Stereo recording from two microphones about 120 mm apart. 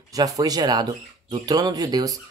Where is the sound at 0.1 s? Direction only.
30° right (ahead or behind).